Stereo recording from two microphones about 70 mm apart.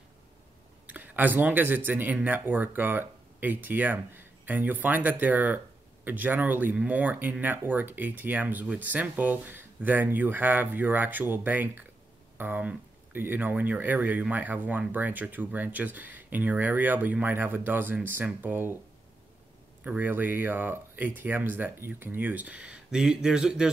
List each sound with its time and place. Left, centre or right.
0.8 s speech: right
19.8 s speech: right